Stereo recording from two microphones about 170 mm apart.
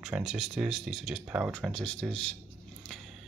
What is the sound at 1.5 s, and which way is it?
Speech, 5° left (ahead or behind).